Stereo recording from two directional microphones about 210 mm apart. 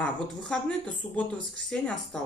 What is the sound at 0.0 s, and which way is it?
Speech, 5° left (ahead or behind).